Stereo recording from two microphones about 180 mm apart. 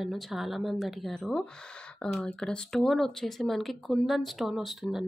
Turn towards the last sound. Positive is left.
turn(degrees=0)  # may be behind; listen again after turning